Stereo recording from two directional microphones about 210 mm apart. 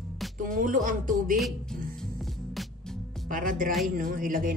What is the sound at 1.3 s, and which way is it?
Speech, centre (ahead or behind).